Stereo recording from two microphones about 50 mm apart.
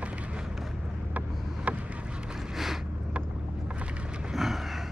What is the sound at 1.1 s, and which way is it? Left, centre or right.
Vehicle, right.